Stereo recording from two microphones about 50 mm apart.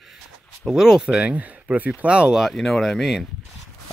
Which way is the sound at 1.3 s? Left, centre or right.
Right.